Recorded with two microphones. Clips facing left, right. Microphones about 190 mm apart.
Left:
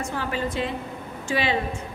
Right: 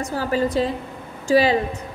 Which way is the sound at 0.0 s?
40° right (ahead or behind).